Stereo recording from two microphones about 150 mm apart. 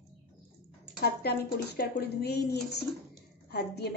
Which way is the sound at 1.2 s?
90° left.